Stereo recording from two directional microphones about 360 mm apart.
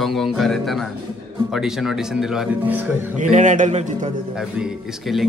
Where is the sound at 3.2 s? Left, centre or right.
Centre.